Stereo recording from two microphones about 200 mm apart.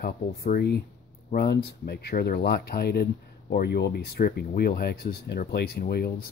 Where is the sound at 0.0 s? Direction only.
50° left (ahead or behind).